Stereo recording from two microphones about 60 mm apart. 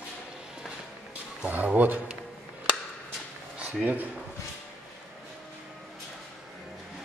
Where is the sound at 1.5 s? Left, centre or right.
Right.